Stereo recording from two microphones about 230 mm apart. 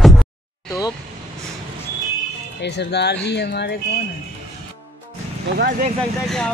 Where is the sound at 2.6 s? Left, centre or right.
Left.